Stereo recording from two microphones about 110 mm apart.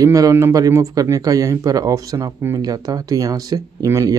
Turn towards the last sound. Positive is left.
turn(degrees=-35)  # may be behind; listen again after turning